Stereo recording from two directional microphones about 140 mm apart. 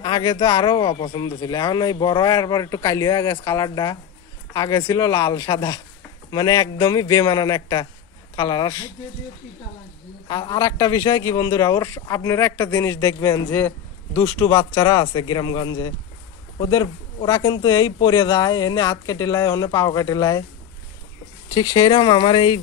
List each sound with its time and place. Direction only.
0.0 s speech: 35° left (ahead or behind)
10.2 s speech: 35° left (ahead or behind)
13.5 s a man's voice: 10° left (ahead or behind)
14.6 s speech: 35° left (ahead or behind)
21.5 s speech: 30° left (ahead or behind)